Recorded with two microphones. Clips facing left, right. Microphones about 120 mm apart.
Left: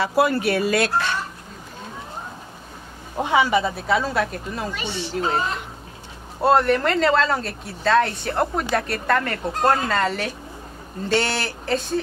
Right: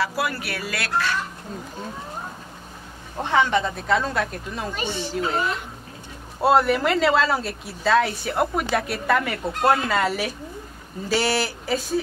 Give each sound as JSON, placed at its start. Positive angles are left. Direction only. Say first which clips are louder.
{"t": 0.0, "sound": "speech", "louder": "left 6 dB", "side_deg": 25}
{"t": 3.2, "sound": "speech", "louder": "left 2 dB", "side_deg": 10}
{"t": 4.7, "sound": "speech", "louder": "right 1 dB", "side_deg": -45}
{"t": 6.4, "sound": "speech", "louder": "left 1 dB", "side_deg": -5}